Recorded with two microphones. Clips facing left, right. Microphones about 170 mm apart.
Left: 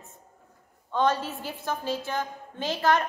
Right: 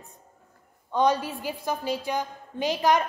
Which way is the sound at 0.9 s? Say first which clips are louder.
Right 2 dB; 15° right (ahead or behind).